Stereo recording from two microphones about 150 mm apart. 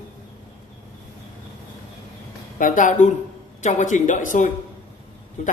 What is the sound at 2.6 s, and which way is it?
A man's voice, 60° left (ahead or behind).